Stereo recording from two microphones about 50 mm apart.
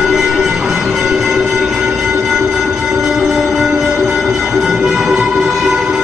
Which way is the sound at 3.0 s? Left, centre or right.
Centre.